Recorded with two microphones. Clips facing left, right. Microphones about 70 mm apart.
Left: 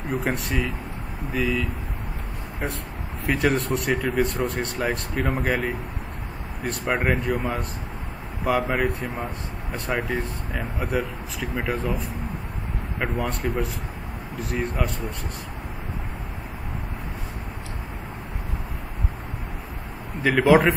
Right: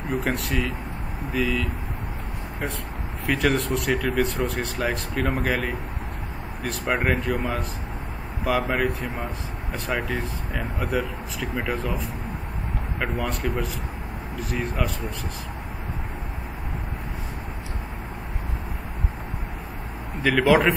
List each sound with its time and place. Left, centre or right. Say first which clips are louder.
0.1 s speech: even; centre
3.5 s speech: even; centre
8.6 s speech: even; centre
9.8 s speech: left 1 dB; centre
10.8 s speech: even; centre
13.0 s speech: left 1 dB; centre
20.2 s speech: left 1 dB; centre